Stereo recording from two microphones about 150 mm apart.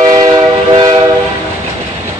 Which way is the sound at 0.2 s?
30° right (ahead or behind).